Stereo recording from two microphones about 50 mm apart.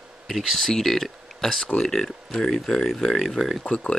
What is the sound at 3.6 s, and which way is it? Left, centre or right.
Speech, left.